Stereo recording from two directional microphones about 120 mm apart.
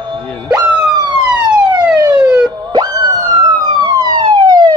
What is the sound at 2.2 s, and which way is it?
Plop, 10° right (ahead or behind).